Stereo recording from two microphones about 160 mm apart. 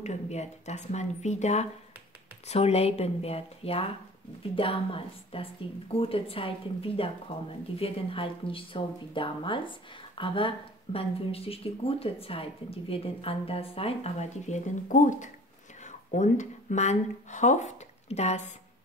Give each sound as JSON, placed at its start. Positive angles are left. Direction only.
{"t": 0.0, "sound": "speech", "side_deg": 45}